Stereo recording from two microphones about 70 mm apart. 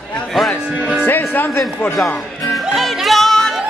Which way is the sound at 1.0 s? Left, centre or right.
Left.